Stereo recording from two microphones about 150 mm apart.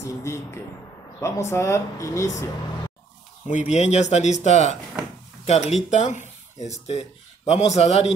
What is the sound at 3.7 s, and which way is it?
Speech, 50° left (ahead or behind).